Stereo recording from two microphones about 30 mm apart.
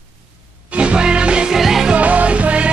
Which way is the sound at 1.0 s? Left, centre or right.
Right.